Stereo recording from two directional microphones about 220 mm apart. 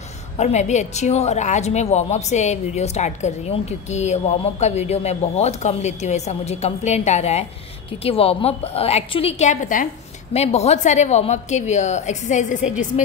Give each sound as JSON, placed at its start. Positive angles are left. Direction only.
{"t": 0.4, "sound": "a woman's voice", "side_deg": 30}